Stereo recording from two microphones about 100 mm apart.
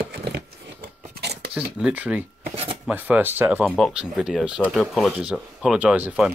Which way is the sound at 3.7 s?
5° left (ahead or behind).